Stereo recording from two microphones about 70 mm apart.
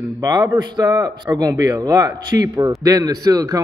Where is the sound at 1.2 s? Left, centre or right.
Right.